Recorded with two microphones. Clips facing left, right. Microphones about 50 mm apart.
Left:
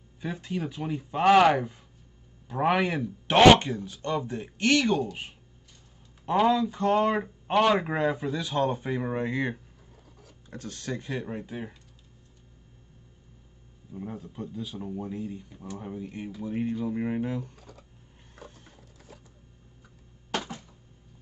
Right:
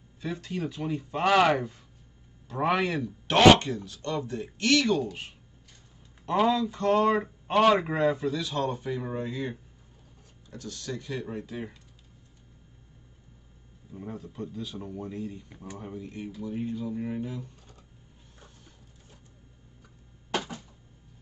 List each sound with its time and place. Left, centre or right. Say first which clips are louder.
0.2 s speech: even; left
6.4 s speech: left 1 dB; centre
8.1 s speech: right 1 dB; left
13.9 s speech: left 1 dB; centre; by 17.5 s left
18.4 s a sound: left 9 dB; left